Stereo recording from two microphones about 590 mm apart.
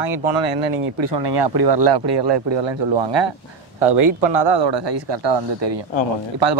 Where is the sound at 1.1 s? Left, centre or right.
Right.